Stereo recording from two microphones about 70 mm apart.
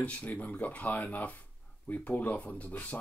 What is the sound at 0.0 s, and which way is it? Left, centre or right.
Speech, left.